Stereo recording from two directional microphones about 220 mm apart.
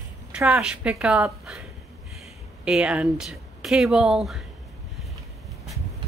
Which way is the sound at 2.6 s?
5° right (ahead or behind).